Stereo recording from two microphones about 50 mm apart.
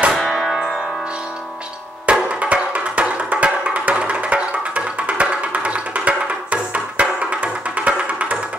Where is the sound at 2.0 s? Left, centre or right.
Right.